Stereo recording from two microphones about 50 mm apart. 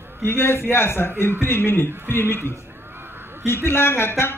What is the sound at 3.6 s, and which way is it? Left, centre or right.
Speech, left.